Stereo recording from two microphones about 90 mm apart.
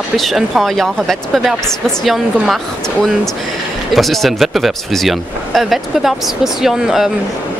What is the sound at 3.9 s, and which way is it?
A woman's voice, centre (ahead or behind).